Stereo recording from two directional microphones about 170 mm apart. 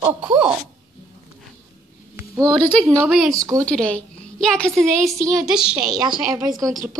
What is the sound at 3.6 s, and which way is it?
A woman's voice, 5° left (ahead or behind).